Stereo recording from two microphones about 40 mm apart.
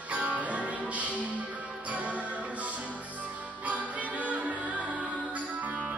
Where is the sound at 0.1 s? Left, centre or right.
Right.